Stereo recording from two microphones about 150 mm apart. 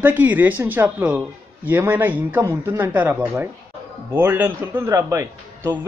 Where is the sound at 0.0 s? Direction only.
10° right (ahead or behind).